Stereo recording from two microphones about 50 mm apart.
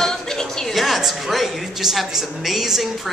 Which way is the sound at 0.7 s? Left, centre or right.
Centre.